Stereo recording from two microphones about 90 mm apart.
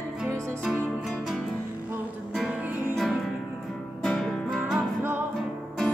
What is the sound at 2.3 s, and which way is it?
Music, 5° right (ahead or behind).